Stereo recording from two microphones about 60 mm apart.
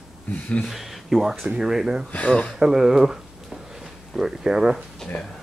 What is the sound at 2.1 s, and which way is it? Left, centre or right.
Speech, left.